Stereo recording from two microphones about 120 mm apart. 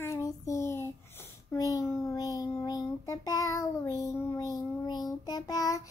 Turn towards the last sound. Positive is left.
turn(degrees=30)  # may be behind; listen again after turning